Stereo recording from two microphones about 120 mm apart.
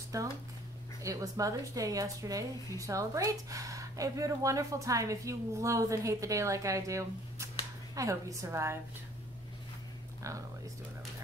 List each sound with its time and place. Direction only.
0.1 s a woman's voice: 30° right (ahead or behind)